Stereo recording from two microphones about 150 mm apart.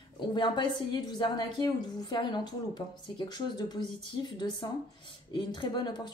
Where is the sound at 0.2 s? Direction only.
30° left (ahead or behind).